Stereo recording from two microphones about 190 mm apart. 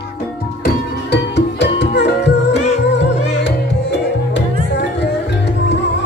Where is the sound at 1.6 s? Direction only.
65° left (ahead or behind).